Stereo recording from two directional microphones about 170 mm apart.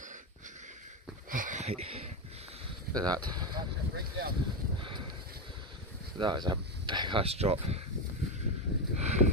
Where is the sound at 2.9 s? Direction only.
25° right (ahead or behind).